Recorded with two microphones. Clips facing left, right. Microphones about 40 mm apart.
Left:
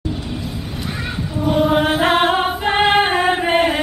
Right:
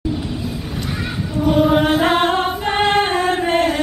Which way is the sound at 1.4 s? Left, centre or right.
Centre.